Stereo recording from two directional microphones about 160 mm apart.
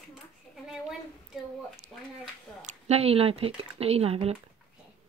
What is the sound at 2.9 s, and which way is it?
Speech, 40° right (ahead or behind).